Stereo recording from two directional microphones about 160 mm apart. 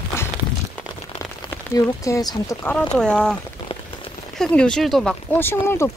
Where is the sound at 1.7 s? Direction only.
20° left (ahead or behind).